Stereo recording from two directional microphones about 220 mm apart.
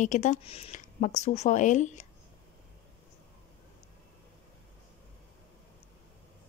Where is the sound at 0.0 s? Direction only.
35° left (ahead or behind).